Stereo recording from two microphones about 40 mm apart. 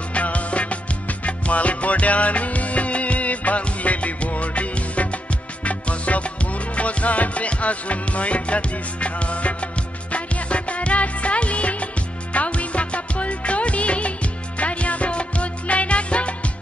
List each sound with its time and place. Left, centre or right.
0.1 s music: left